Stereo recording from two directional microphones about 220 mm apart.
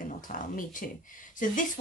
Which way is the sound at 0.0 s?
40° left (ahead or behind).